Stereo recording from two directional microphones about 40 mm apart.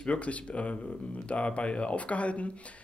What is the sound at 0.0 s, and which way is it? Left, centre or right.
Speech, left.